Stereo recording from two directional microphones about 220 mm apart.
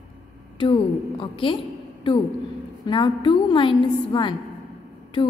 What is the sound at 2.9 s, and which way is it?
A woman's voice, 20° left (ahead or behind).